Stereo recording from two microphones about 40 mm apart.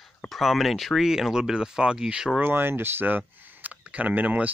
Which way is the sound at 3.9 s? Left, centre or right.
Right.